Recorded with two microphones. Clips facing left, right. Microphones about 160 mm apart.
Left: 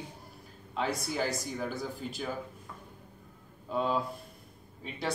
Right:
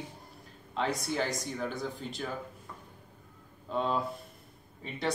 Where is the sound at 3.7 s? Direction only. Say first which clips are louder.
Even; 5° left (ahead or behind).